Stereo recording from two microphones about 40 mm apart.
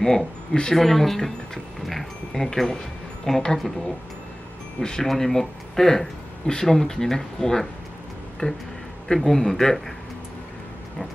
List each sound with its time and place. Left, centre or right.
0.0 s speech: centre
4.7 s speech: centre
8.4 s speech: left
9.0 s speech: centre